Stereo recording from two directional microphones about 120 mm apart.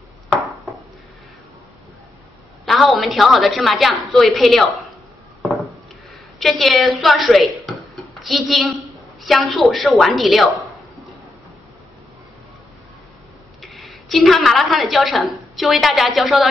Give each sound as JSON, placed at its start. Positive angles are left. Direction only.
{"t": 2.6, "sound": "a woman's voice", "side_deg": 0}
{"t": 5.4, "sound": "wood", "side_deg": 0}
{"t": 6.4, "sound": "a woman's voice", "side_deg": 0}
{"t": 7.6, "sound": "a sound", "side_deg": 0}
{"t": 9.2, "sound": "a woman's voice", "side_deg": 0}
{"t": 13.6, "sound": "a woman's voice", "side_deg": 0}